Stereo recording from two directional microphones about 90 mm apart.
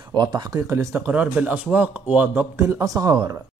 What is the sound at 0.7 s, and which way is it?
Speech, 30° right (ahead or behind).